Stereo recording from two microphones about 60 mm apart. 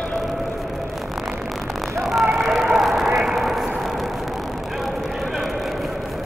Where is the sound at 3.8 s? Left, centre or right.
Centre.